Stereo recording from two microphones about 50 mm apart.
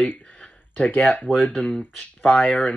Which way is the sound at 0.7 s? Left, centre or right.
Left.